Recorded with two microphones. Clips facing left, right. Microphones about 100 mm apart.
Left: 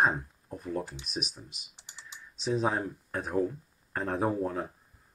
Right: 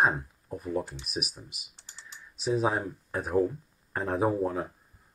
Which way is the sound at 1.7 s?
15° left (ahead or behind).